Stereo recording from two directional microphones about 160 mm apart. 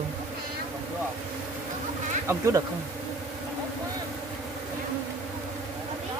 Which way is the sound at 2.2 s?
20° right (ahead or behind).